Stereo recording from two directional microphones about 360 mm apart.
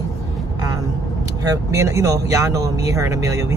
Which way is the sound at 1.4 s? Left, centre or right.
Centre.